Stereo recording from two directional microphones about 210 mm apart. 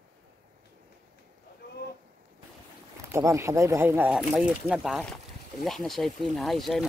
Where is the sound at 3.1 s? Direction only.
15° right (ahead or behind).